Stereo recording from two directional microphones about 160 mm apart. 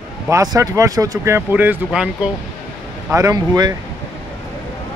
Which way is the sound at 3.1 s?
20° right (ahead or behind).